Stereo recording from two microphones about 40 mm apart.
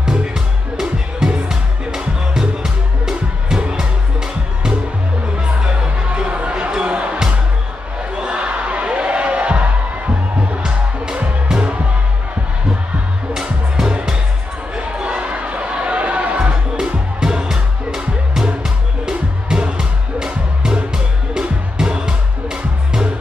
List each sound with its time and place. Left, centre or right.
0.0 s music: centre
5.6 s music: centre
13.3 s music: centre
14.8 s a sound: right
16.7 s music: centre